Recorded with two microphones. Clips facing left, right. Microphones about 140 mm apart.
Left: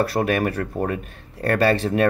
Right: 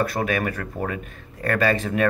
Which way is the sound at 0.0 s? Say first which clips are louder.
Left 3 dB; 35° left (ahead or behind).